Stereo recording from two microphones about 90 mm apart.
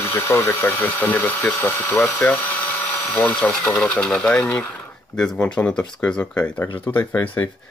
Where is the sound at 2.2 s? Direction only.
10° left (ahead or behind).